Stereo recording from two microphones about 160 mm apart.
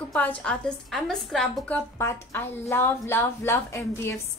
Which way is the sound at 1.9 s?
15° left (ahead or behind).